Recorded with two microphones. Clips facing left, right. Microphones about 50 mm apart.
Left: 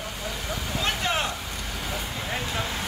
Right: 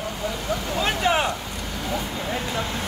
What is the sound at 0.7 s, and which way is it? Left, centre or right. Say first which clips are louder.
Vehicle: right 5 dB; centre.